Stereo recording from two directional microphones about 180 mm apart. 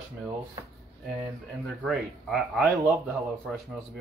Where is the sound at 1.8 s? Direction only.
Centre (ahead or behind).